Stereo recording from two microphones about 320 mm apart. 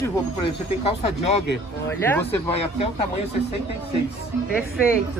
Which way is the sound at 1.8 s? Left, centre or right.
Centre.